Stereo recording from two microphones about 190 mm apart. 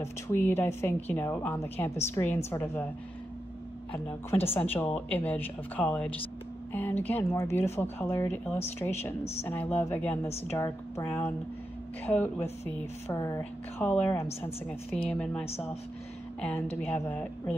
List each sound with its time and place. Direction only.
0.0 s a woman's voice: 10° left (ahead or behind)
4.4 s speech: 30° left (ahead or behind)
4.9 s a woman's voice: 10° left (ahead or behind)
12.1 s a woman's voice: 10° left (ahead or behind)
15.4 s speech: 35° left (ahead or behind)
16.3 s a woman's voice: 5° left (ahead or behind)